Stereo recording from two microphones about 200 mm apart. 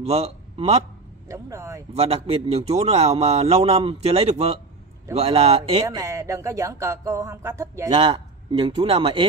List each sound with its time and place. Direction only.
0.0 s a man's voice: 30° right (ahead or behind)
1.3 s speech: 15° right (ahead or behind)
2.0 s a man's voice: 30° right (ahead or behind)
5.9 s a man's voice: 15° right (ahead or behind)